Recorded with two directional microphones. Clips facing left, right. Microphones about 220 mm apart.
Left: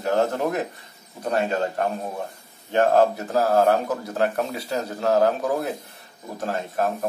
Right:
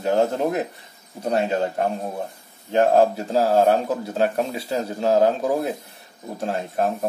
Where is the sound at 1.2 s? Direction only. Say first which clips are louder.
Right 2 dB; 25° right (ahead or behind).